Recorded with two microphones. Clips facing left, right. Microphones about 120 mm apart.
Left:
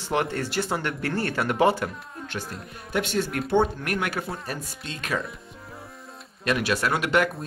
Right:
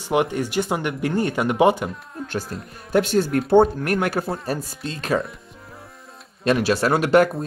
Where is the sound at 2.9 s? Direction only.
40° right (ahead or behind).